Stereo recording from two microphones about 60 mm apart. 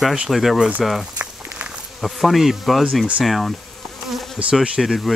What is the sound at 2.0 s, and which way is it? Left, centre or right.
Bee, centre.